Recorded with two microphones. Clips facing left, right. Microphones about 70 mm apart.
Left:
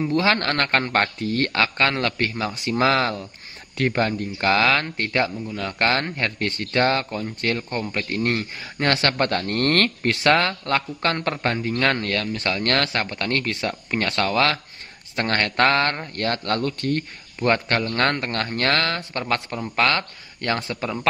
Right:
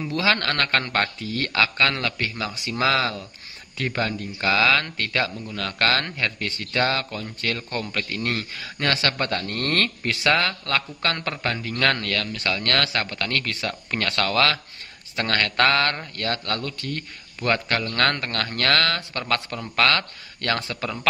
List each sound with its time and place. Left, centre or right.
0.0 s a man's voice: left
2.8 s speech: left
4.9 s speech: left
6.1 s a man's voice: left
8.8 s speech: left
10.6 s speech: left
16.2 s a man's voice: left